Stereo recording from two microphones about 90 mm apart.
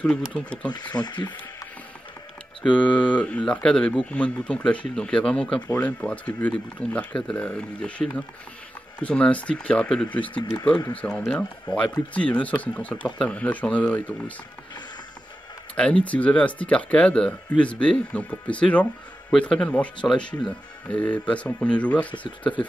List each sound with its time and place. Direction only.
0.0 s speech: 15° left (ahead or behind)
0.7 s speech: 55° left (ahead or behind)
2.6 s speech: 15° left (ahead or behind)
11.1 s speech: 15° left (ahead or behind)
15.7 s speech: 15° left (ahead or behind)